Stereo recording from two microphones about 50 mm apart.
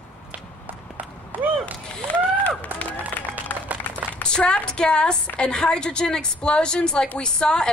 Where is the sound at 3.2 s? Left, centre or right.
Left.